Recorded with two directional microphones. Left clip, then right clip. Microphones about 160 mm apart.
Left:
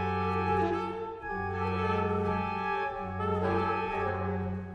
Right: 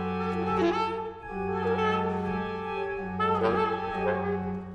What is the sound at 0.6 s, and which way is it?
Music, 50° right (ahead or behind).